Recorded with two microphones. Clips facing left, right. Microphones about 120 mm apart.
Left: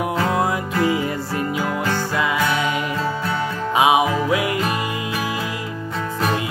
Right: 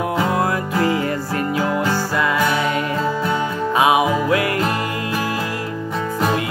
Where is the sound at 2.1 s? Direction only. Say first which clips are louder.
Right 2 dB; 15° left (ahead or behind).